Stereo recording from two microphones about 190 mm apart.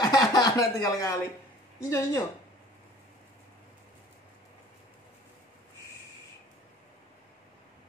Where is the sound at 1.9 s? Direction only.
15° left (ahead or behind).